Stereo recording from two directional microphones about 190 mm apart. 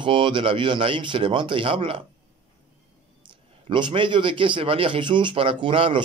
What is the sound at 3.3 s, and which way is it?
A man's voice, 25° right (ahead or behind).